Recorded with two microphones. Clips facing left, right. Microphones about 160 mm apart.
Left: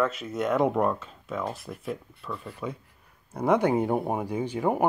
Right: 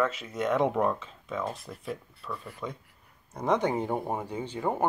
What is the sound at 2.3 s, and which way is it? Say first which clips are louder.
Speech: left 2 dB; 25° left (ahead or behind).